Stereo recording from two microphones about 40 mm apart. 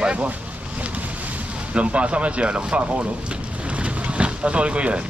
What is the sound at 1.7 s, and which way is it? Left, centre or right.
Speech, right.